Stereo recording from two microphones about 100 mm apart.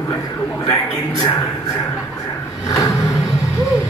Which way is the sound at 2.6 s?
40° left (ahead or behind).